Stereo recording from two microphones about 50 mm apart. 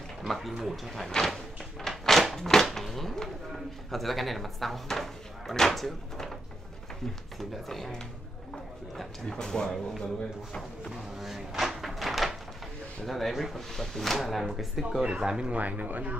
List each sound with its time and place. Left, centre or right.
0.2 s speech: centre
1.0 s a sound: centre
2.3 s speech: centre
7.3 s speech: centre
11.1 s door: centre
13.0 s speech: centre
15.0 s speech: centre
15.6 s speech: right